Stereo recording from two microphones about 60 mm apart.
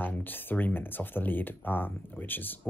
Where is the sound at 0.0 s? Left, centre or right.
Left.